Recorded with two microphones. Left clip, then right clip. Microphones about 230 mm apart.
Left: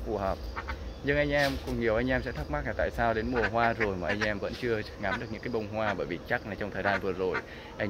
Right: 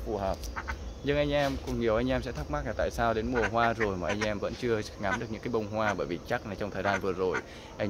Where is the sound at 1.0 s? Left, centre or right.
Centre.